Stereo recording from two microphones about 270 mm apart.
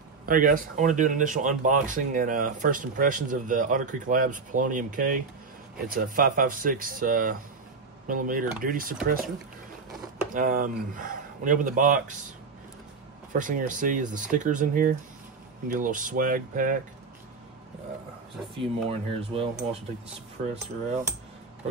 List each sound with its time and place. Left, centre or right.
0.3 s speech: right
10.3 s speech: right
13.3 s speech: right
18.6 s speech: right